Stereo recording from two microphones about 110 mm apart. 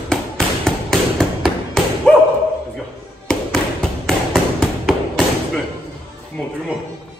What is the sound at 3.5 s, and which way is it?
Tap, 5° left (ahead or behind).